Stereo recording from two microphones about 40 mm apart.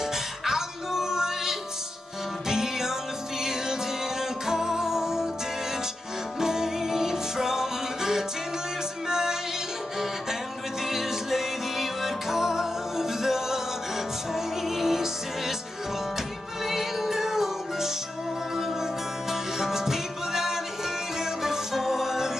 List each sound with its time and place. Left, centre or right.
0.5 s music: centre
4.5 s music: centre
6.4 s music: centre
10.9 s music: centre
16.6 s music: centre
19.6 s music: centre